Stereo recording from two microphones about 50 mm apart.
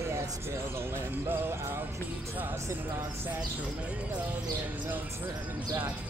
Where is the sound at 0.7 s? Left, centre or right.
Right.